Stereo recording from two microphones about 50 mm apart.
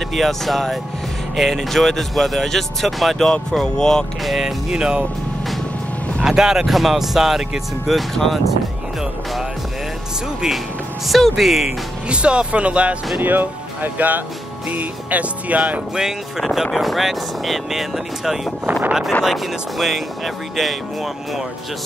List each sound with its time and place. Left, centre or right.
0.1 s speech: centre
3.3 s speech: centre
4.2 s speech: centre
4.6 s speech: centre
6.2 s speech: centre
11.1 s speech: centre
12.1 s speech: right
13.2 s speech: right
15.9 s speech: centre
18.7 s speech: right
19.2 s speech: centre